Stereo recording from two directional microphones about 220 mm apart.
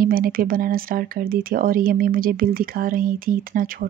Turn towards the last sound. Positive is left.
turn(degrees=-40)  # may be behind; listen again after turning